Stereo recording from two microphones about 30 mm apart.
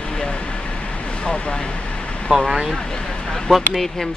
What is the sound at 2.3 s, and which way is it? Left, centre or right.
Speech, right.